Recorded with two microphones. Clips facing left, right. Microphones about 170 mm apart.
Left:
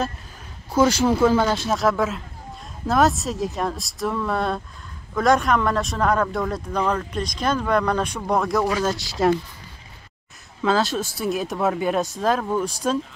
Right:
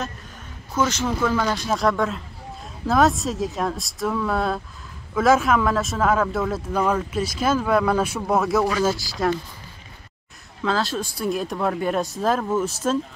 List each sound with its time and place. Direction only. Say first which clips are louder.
0.7 s speech: left 5 dB; 30° left (ahead or behind)
1.7 s speech: even; centre (ahead or behind)
10.6 s speech: left 3 dB; centre (ahead or behind)